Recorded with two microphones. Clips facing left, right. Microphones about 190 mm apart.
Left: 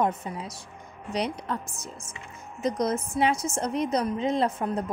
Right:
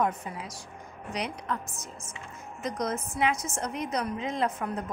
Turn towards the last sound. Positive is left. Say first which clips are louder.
# left 4 dB
turn(degrees=30)  # may be behind; listen again after turning